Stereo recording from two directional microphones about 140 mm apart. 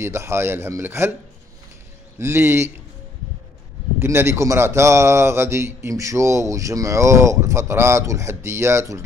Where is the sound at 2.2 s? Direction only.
20° right (ahead or behind).